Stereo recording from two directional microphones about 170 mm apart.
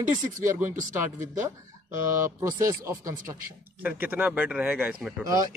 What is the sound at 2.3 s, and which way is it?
A man's voice, 20° right (ahead or behind).